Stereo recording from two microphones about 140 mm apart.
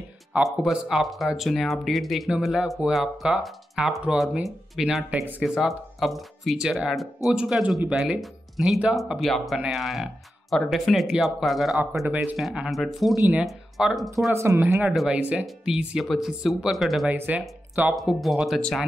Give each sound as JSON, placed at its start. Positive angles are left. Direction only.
{"t": 0.3, "sound": "speech", "side_deg": -5}
{"t": 12.1, "sound": "speech", "side_deg": -10}
{"t": 14.3, "sound": "speech", "side_deg": -20}
{"t": 14.8, "sound": "speech", "side_deg": -5}
{"t": 17.1, "sound": "speech", "side_deg": -15}
{"t": 17.9, "sound": "speech", "side_deg": 0}